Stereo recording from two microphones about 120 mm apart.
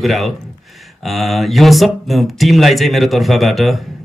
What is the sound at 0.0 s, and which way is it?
Speech, centre (ahead or behind).